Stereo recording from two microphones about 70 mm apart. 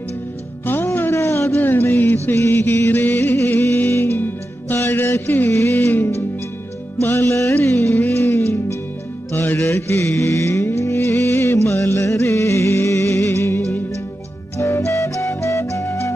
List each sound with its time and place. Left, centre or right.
0.7 s music: left
5.5 s music: left
5.8 s music: left
9.3 s music: left
9.6 s music: left